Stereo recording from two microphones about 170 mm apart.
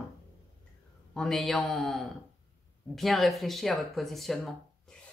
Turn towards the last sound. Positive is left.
turn(degrees=0)  # may be behind; listen again after turning